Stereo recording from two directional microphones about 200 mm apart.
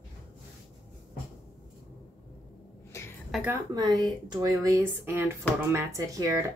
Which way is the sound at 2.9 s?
15° left (ahead or behind).